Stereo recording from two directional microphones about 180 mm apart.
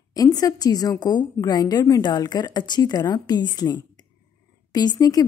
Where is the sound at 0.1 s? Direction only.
20° left (ahead or behind).